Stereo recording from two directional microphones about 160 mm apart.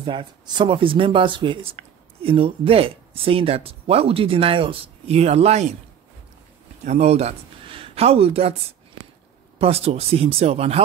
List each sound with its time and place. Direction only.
0.0 s speech: 30° right (ahead or behind)
6.8 s speech: 45° right (ahead or behind)
9.6 s speech: 40° right (ahead or behind)